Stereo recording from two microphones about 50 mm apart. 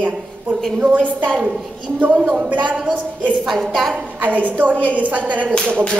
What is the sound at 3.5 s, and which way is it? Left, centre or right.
Speech, centre.